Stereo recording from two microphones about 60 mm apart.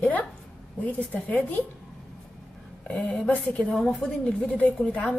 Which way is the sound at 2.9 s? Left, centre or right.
Left.